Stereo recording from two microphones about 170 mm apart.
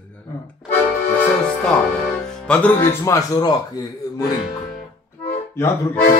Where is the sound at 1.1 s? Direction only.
10° left (ahead or behind).